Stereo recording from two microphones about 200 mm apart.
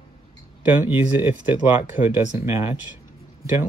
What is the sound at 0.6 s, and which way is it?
Speech, 10° right (ahead or behind).